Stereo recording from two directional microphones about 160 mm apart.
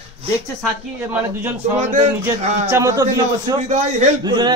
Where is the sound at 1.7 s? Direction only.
45° right (ahead or behind).